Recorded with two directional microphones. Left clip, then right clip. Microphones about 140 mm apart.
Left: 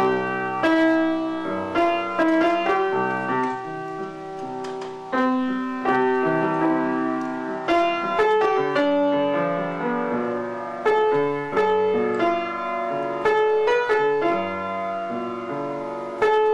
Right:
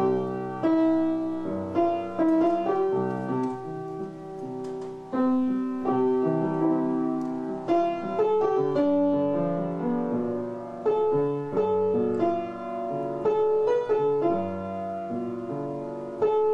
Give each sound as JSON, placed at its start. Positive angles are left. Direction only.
{"t": 0.0, "sound": "music", "side_deg": 25}
{"t": 5.1, "sound": "music", "side_deg": 30}